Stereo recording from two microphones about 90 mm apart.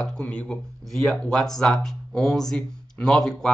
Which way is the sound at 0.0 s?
10° left (ahead or behind).